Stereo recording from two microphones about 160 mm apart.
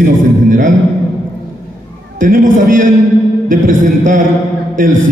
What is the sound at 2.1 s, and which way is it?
Music, 60° right (ahead or behind).